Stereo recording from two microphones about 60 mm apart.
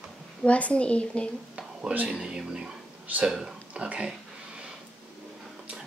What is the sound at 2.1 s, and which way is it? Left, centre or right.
Speech, centre.